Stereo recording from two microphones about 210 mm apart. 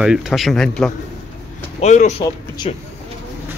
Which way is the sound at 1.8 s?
35° left (ahead or behind).